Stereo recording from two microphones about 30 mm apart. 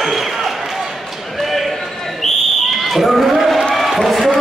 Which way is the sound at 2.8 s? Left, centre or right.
Centre.